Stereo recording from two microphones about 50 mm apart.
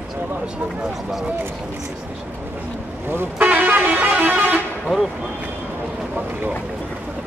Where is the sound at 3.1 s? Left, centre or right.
Right.